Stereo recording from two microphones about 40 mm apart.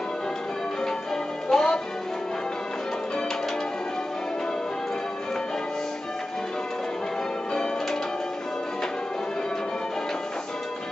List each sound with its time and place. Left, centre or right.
1.5 s music: centre